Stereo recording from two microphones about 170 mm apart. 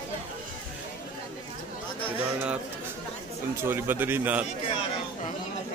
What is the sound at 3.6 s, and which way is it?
Speech, 10° right (ahead or behind).